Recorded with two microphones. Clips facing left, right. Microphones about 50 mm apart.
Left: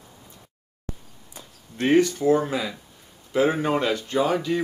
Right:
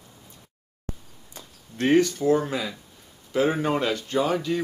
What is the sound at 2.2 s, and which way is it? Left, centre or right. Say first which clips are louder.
Speech: left 1 dB; centre.